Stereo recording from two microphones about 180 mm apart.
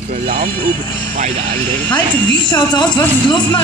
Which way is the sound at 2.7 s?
25° left (ahead or behind).